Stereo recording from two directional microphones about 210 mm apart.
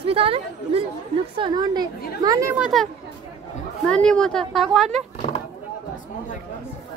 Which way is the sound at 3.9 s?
5° left (ahead or behind).